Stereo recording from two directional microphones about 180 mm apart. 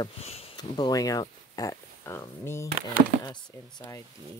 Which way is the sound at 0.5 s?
25° left (ahead or behind).